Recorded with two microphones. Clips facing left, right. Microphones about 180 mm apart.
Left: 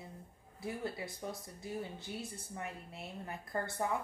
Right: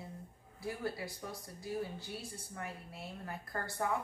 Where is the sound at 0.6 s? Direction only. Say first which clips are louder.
Right 1 dB; 20° left (ahead or behind).